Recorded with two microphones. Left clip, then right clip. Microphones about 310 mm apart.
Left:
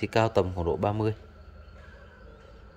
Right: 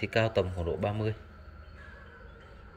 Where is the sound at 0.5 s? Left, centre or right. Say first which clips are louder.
Left 5 dB; left.